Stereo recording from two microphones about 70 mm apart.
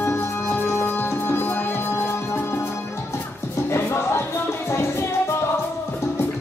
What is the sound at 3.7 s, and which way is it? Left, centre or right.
Music, left.